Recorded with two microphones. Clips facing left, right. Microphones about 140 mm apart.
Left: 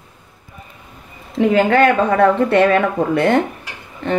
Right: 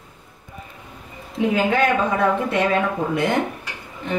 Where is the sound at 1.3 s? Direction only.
65° left (ahead or behind).